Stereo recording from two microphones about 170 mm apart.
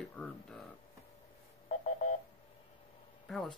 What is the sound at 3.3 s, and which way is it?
Speech, centre (ahead or behind).